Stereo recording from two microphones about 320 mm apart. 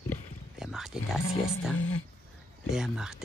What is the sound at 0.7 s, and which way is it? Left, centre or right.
Speech, centre.